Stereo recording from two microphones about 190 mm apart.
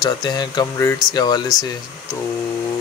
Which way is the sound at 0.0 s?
20° left (ahead or behind).